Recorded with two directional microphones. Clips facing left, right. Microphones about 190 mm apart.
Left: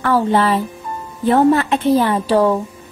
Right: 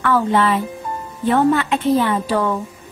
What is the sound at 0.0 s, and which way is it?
Speech, 35° left (ahead or behind).